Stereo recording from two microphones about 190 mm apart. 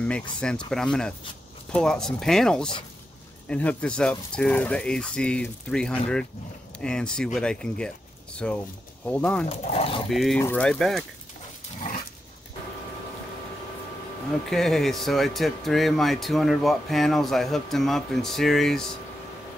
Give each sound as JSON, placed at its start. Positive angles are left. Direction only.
{"t": 0.0, "sound": "speech", "side_deg": 5}
{"t": 9.5, "sound": "speech", "side_deg": 30}
{"t": 10.0, "sound": "speech", "side_deg": 0}
{"t": 14.5, "sound": "speech", "side_deg": 0}